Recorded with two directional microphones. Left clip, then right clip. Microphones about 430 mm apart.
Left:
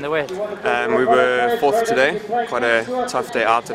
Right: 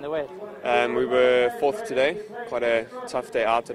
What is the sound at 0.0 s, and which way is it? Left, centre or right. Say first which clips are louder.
A man's voice: left 8 dB; right.